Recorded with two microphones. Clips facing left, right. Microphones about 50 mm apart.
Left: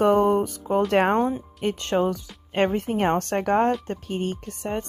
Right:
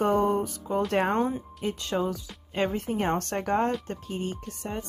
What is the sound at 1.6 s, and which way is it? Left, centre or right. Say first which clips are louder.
A woman's voice: left 6 dB; left.